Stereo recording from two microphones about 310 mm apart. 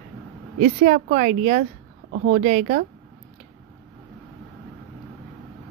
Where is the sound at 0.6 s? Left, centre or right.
Right.